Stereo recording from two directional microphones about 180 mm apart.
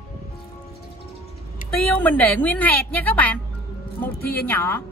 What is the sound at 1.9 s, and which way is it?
A woman's voice, 10° left (ahead or behind).